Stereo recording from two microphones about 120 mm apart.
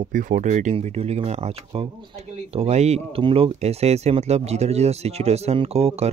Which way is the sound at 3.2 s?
50° right (ahead or behind).